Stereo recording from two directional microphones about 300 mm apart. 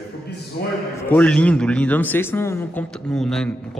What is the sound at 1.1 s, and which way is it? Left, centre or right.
Speech, centre.